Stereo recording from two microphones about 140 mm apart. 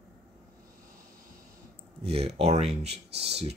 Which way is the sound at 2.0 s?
45° right (ahead or behind).